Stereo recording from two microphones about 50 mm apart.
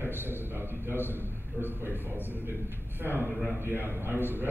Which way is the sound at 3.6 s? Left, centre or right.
Right.